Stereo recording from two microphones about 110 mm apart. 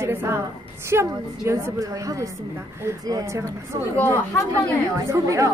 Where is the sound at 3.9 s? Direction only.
20° left (ahead or behind).